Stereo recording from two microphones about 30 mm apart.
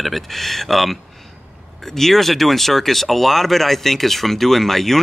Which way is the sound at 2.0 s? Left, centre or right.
Centre.